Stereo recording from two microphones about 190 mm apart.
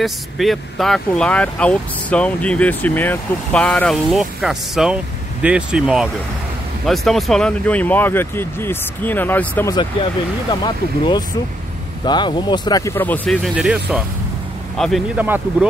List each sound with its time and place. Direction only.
0.0 s speech: centre (ahead or behind)
10.5 s speech: 20° left (ahead or behind); by 15.2 s centre (ahead or behind)